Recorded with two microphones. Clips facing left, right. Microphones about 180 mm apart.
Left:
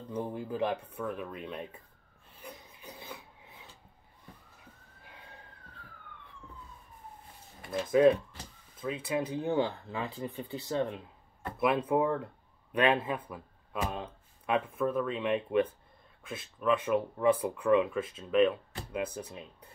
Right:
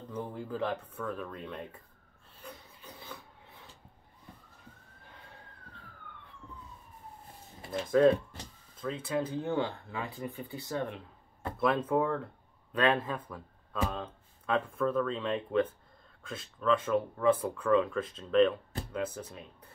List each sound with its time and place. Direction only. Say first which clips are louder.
0.1 s speech: left 2 dB; 20° left (ahead or behind)
2.4 s rub: left 1 dB; 15° left (ahead or behind)
7.7 s speech: left 1 dB; 10° left (ahead or behind)
11.6 s speech: left 1 dB; 10° left (ahead or behind)